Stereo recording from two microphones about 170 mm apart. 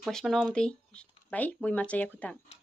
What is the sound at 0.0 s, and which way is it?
Speech, centre (ahead or behind).